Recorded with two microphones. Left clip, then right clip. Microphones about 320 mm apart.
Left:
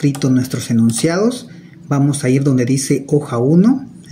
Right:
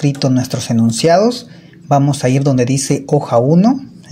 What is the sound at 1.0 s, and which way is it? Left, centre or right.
Speech, right.